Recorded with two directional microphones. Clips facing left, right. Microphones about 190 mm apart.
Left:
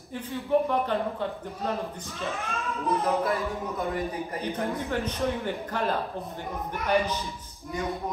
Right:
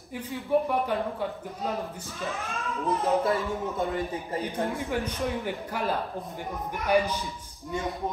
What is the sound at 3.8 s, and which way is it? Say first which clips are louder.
Speech: left 2 dB; 25° right (ahead or behind).